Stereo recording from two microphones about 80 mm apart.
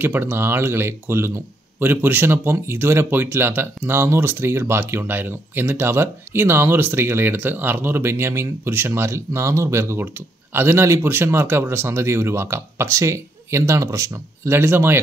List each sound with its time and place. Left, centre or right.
0.0 s speech: right